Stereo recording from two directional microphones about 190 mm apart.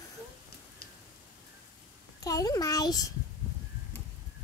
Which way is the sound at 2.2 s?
20° left (ahead or behind).